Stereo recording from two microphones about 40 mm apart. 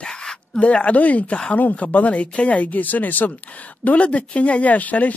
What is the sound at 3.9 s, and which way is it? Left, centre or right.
Speech, left.